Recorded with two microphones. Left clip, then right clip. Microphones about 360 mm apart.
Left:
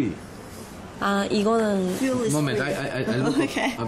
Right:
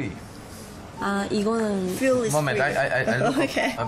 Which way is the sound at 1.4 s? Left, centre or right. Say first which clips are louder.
Left 4 dB; left.